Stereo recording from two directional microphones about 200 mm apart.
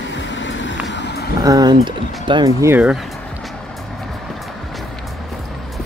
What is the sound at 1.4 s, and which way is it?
Speech, 20° right (ahead or behind).